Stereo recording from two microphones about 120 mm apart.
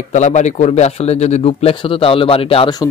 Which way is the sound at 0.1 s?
75° left (ahead or behind).